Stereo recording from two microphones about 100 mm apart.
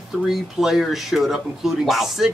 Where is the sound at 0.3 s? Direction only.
5° right (ahead or behind).